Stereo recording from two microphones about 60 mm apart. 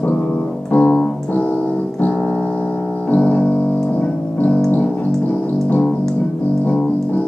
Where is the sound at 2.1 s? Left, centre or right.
Centre.